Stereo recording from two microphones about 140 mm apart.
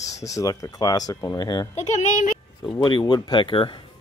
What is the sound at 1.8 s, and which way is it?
Speech, 55° left (ahead or behind).